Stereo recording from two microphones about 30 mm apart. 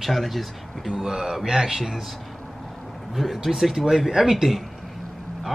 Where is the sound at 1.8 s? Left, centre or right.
Centre.